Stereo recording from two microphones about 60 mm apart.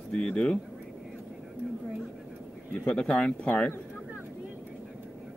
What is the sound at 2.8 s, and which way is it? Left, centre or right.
Speech, centre.